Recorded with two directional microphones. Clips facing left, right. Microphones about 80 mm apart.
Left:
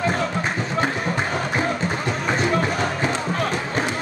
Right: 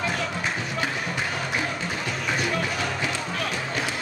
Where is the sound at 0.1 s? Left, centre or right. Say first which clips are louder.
Left 5 dB; left.